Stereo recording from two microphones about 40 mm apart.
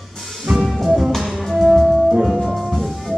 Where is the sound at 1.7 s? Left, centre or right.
Centre.